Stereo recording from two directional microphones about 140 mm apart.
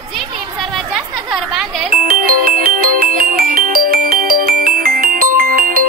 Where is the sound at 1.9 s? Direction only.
85° right.